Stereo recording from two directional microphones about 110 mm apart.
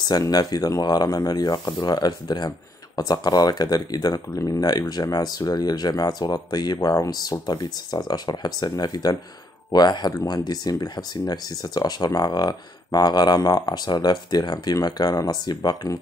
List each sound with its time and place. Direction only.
0.1 s speech: 35° left (ahead or behind)